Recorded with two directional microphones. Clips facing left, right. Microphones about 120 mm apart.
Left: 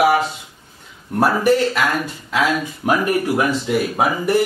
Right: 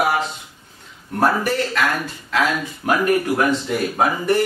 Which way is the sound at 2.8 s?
20° left (ahead or behind).